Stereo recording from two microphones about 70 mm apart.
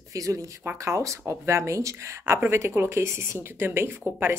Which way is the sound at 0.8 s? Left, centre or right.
Right.